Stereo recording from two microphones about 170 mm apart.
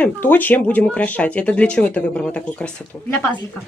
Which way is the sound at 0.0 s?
10° left (ahead or behind).